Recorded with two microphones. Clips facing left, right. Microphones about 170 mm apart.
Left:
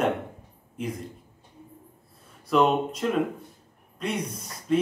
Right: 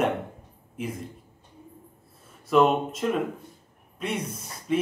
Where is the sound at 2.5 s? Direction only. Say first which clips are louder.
Right 1 dB; centre (ahead or behind).